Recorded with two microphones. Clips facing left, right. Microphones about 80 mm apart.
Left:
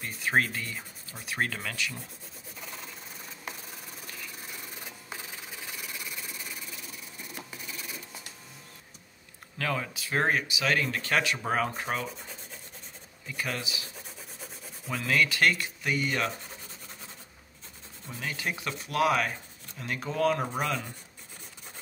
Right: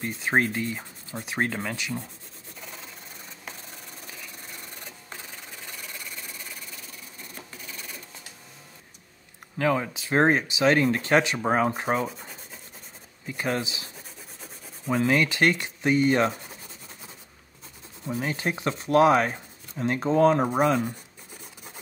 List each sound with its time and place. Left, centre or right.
0.0 s speech: right
2.6 s rub: centre
9.6 s speech: right
13.3 s speech: right
14.9 s speech: right
18.0 s speech: right